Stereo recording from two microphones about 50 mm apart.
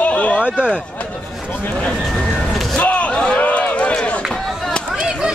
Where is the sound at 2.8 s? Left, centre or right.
Left.